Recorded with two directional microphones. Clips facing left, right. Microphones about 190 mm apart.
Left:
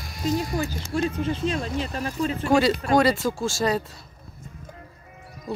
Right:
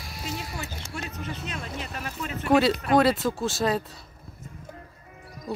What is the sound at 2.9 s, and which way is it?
Speech, centre (ahead or behind).